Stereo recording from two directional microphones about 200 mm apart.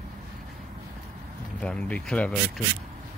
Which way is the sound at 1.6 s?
5° left (ahead or behind).